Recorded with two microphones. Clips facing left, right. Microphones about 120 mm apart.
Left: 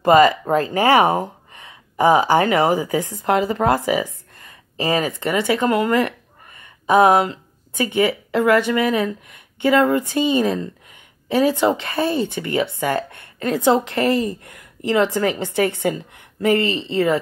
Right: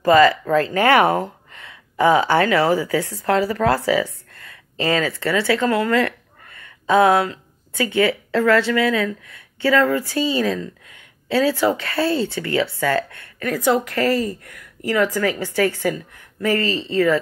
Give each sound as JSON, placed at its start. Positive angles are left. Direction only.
{"t": 0.0, "sound": "speech", "side_deg": 20}